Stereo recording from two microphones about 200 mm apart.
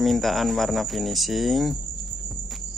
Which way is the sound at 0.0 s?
Centre (ahead or behind).